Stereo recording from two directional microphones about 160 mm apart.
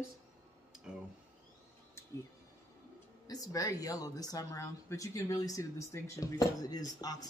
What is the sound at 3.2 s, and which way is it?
Speech, 25° left (ahead or behind).